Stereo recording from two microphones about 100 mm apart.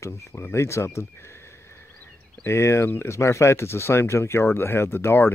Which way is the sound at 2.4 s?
25° left (ahead or behind).